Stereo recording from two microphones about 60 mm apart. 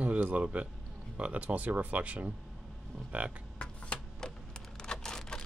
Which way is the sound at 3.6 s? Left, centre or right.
Centre.